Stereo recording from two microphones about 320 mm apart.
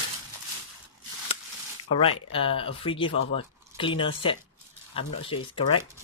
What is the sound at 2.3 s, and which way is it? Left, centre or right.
Speech, centre.